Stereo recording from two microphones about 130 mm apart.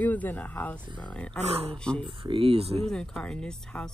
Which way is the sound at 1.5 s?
50° right (ahead or behind).